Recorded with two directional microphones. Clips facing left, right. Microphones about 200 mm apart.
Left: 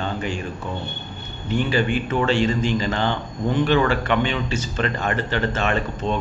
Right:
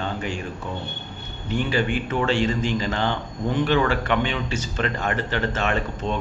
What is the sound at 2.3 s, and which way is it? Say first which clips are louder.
A man's voice: left 2 dB; 10° right (ahead or behind).